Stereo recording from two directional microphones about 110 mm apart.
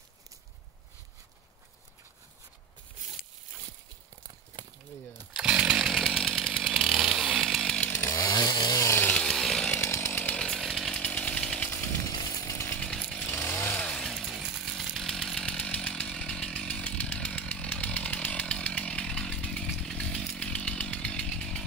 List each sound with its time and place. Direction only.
5.3 s chainsaw: 5° right (ahead or behind)
7.9 s chainsaw: 20° left (ahead or behind)
8.2 s chainsaw: 45° left (ahead or behind); by 9.1 s 25° left (ahead or behind)
9.1 s chainsaw: 5° left (ahead or behind)
9.7 s chainsaw: 20° left (ahead or behind)
12.8 s chainsaw: 10° left (ahead or behind)
13.3 s chainsaw: 20° left (ahead or behind)